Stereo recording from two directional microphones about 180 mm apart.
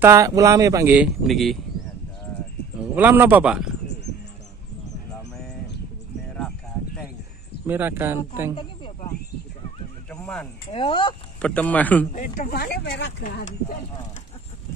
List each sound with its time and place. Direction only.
0.0 s speech: 15° right (ahead or behind)
0.9 s a man's voice: 5° right (ahead or behind)
2.8 s speech: 10° right (ahead or behind)
7.6 s speech: 10° right (ahead or behind)
10.1 s a sound: 5° left (ahead or behind)
10.7 s speech: 30° left (ahead or behind)
11.4 s speech: 10° left (ahead or behind)
12.1 s speech: 50° left (ahead or behind); by 13.3 s 65° left (ahead or behind)